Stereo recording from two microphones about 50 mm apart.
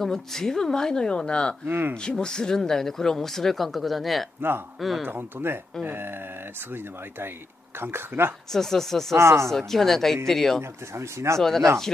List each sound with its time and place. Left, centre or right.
0.0 s speech: centre
1.7 s speech: right
2.0 s speech: centre
5.0 s speech: right
7.8 s speech: right
8.5 s speech: centre
9.1 s speech: right
9.5 s speech: centre
11.0 s speech: right
11.3 s speech: centre